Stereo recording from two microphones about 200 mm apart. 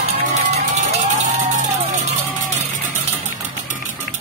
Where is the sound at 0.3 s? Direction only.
35° right (ahead or behind).